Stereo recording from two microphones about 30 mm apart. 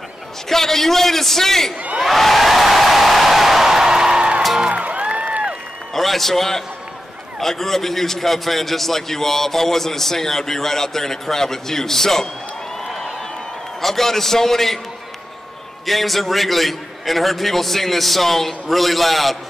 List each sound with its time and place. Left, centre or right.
0.5 s a man's voice: centre
2.0 s a sound: centre
4.1 s music: right
4.7 s music: right
5.0 s a sound: right
5.9 s a man's voice: centre
13.7 s a man's voice: centre
15.8 s a man's voice: centre